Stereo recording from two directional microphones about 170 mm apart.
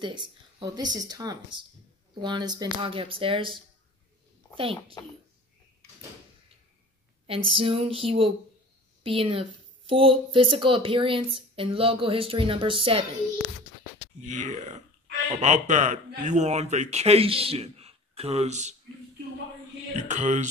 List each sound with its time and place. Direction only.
0.0 s speech: 25° right (ahead or behind)
5.0 s a child's voice: 20° left (ahead or behind)
7.2 s speech: 35° right (ahead or behind)
14.2 s speech: 45° right (ahead or behind)
20.0 s speech: 45° right (ahead or behind)